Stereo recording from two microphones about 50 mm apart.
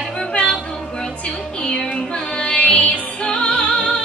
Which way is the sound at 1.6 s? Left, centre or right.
Centre.